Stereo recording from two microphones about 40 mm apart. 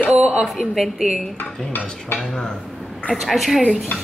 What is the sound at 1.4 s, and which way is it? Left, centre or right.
Cutlery, left.